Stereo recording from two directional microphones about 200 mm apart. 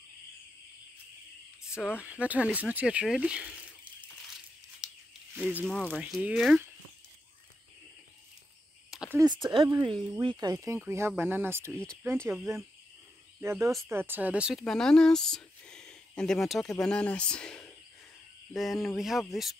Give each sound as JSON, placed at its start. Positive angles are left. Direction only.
{"t": 1.9, "sound": "speech", "side_deg": -5}
{"t": 4.8, "sound": "a sound", "side_deg": -5}
{"t": 5.7, "sound": "speech", "side_deg": 5}
{"t": 8.9, "sound": "a sound", "side_deg": -5}
{"t": 9.2, "sound": "speech", "side_deg": -20}
{"t": 11.7, "sound": "speech", "side_deg": 5}
{"t": 13.4, "sound": "speech", "side_deg": -10}